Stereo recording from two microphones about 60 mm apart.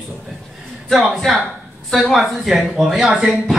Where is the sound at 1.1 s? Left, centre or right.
Centre.